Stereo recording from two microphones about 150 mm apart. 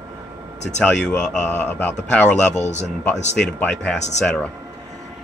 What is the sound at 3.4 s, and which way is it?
Speech, 5° left (ahead or behind).